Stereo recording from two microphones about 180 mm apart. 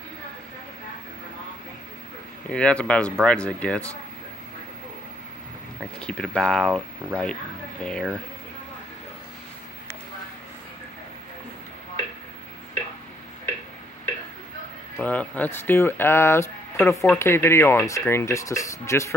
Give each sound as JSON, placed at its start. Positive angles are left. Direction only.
{"t": 2.5, "sound": "speech", "side_deg": 5}
{"t": 5.9, "sound": "speech", "side_deg": 5}
{"t": 15.0, "sound": "speech", "side_deg": 10}